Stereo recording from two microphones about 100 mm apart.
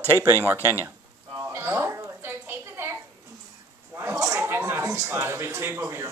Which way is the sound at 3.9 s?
30° right (ahead or behind).